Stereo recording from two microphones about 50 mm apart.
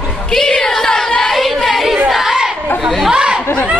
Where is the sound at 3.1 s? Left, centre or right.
Centre.